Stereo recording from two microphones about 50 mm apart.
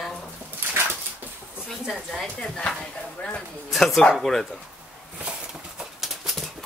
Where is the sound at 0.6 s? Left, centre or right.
Right.